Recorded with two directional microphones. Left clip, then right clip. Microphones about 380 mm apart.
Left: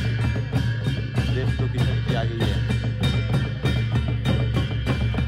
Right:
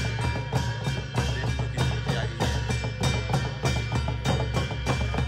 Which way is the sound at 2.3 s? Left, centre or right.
Centre.